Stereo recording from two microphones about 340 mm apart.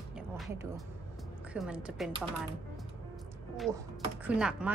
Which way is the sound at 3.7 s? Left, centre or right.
Centre.